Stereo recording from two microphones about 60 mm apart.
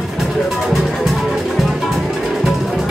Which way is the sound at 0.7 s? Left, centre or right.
Centre.